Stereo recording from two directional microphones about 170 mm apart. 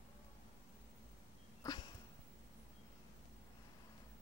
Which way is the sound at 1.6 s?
20° left (ahead or behind).